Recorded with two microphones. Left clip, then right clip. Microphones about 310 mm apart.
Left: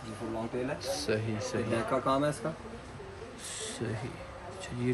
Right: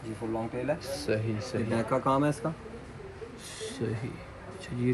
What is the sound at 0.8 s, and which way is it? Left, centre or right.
Speech, centre.